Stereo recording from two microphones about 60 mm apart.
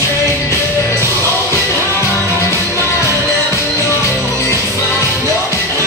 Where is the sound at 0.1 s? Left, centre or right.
Left.